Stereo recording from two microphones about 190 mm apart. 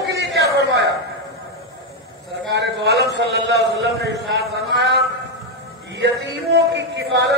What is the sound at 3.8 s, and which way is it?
Speech, 60° right (ahead or behind).